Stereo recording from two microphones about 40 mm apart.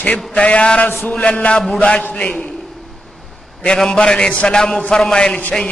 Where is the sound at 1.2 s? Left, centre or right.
Left.